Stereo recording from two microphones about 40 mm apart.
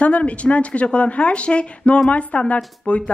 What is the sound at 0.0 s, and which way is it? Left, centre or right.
Speech, left.